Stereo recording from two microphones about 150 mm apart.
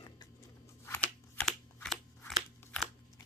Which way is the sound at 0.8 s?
10° left (ahead or behind).